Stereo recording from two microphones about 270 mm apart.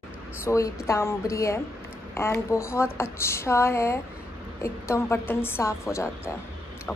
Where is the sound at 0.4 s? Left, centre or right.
Centre.